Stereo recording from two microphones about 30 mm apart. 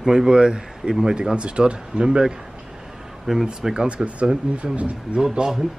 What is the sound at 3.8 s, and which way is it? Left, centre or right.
Speech, right.